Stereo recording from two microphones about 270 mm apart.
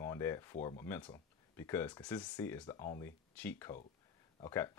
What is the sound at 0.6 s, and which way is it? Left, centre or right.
Speech, centre.